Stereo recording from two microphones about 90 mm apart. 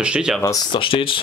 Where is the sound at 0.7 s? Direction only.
75° left (ahead or behind).